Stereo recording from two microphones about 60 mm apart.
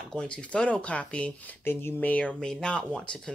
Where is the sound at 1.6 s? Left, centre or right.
Left.